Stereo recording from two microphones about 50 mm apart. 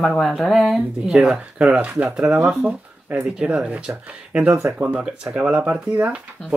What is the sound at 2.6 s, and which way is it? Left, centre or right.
Speech, right.